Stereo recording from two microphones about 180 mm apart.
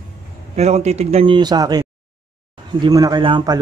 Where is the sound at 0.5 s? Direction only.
40° right (ahead or behind).